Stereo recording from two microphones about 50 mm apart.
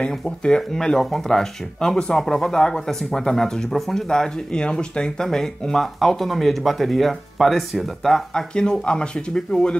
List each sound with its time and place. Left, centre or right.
0.2 s speech: centre
8.5 s speech: centre